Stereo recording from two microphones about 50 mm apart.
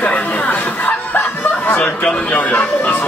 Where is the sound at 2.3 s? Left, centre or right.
Left.